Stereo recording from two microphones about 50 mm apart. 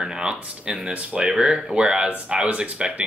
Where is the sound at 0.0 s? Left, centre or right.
Centre.